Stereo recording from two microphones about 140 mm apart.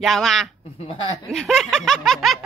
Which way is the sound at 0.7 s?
45° left (ahead or behind).